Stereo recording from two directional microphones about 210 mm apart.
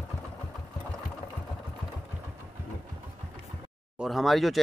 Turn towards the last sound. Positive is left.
turn(degrees=0)  # may be behind; listen again after turning